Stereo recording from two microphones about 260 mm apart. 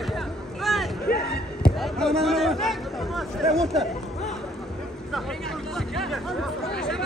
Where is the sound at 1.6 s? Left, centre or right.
Centre.